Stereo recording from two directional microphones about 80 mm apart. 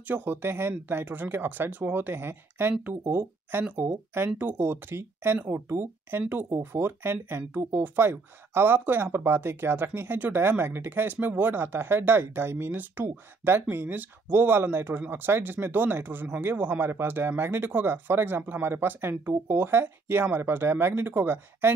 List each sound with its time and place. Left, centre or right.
0.1 s speech: right